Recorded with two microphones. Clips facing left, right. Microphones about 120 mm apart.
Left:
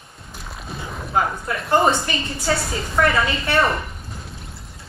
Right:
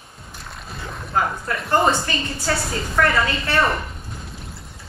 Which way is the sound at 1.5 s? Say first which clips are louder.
Left 1 dB; centre (ahead or behind).